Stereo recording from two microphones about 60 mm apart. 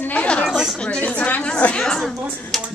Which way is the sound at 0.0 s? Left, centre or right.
Left.